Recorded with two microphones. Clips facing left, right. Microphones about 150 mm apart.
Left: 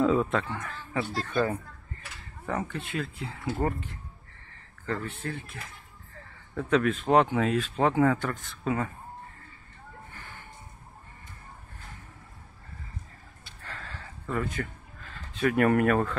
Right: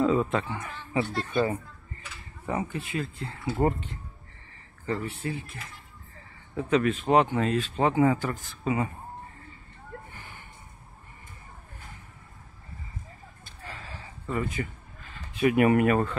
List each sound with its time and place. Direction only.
0.0 s a sound: centre (ahead or behind)
1.2 s speech: 10° right (ahead or behind)
3.6 s speech: 25° right (ahead or behind)
4.8 s speech: 10° right (ahead or behind)
6.5 s speech: 5° right (ahead or behind)
13.7 s a sound: 10° right (ahead or behind)